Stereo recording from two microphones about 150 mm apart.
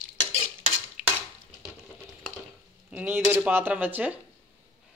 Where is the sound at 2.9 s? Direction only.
10° right (ahead or behind).